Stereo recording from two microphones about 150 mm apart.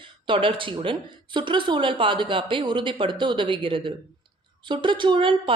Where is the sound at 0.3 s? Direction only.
35° right (ahead or behind).